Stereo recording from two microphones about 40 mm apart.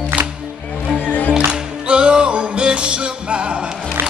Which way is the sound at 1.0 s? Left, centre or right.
Left.